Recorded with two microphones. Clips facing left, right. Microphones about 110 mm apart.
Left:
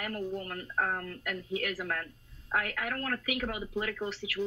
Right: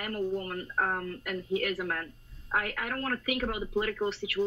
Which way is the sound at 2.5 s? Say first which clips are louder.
Right 1 dB; 40° right (ahead or behind).